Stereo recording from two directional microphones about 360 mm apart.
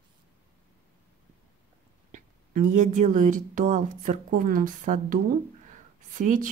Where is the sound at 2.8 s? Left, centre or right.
Centre.